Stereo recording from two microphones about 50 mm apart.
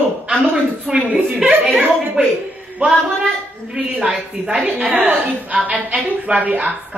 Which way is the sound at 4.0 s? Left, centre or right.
Right.